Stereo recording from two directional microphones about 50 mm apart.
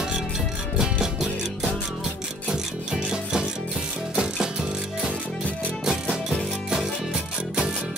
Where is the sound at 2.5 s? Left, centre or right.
Centre.